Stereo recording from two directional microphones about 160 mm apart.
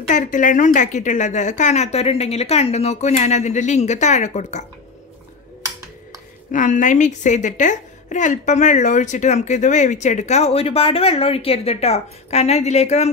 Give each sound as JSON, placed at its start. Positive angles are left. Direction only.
{"t": 0.1, "sound": "a woman's voice", "side_deg": 55}
{"t": 6.5, "sound": "a woman's voice", "side_deg": 50}